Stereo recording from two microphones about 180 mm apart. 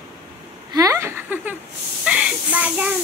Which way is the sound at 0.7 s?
20° right (ahead or behind).